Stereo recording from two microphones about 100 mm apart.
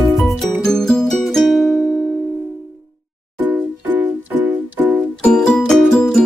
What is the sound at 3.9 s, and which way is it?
Music, 20° right (ahead or behind).